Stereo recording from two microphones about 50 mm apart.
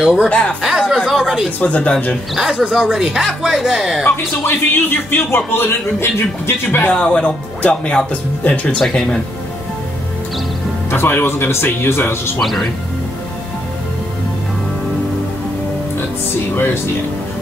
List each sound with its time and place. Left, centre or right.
0.0 s speech: centre
0.3 s speech: left
0.6 s a sound: centre
1.6 s speech: left
2.6 s speech: centre
4.5 s a man's voice: left
6.9 s speech: centre
8.7 s speech: centre
10.9 s a man's voice: left
12.4 s speech: centre